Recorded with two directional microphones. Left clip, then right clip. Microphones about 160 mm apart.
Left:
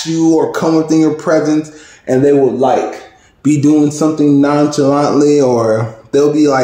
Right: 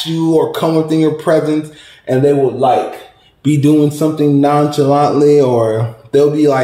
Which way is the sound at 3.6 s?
Centre (ahead or behind).